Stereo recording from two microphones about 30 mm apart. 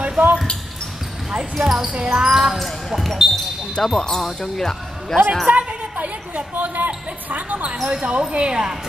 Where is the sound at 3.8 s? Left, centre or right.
Centre.